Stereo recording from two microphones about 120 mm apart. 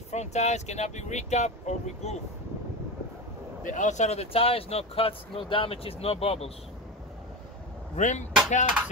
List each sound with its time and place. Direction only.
0.1 s speech: 70° left (ahead or behind)
3.6 s speech: 90° left; by 6.5 s 55° left (ahead or behind)
7.9 s speech: 85° left
8.5 s a sound: 85° left